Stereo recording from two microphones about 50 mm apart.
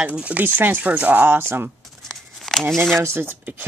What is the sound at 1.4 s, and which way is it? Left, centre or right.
Speech, right.